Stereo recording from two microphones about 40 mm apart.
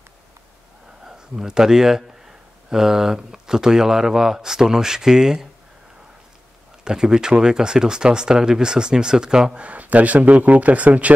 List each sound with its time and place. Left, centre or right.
1.0 s a man's voice: centre
6.8 s speech: centre
9.6 s speech: right